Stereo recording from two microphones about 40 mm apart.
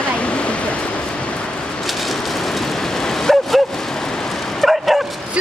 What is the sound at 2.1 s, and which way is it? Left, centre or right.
Train, centre.